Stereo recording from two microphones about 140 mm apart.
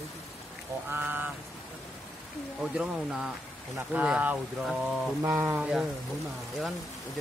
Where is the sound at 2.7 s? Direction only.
5° right (ahead or behind).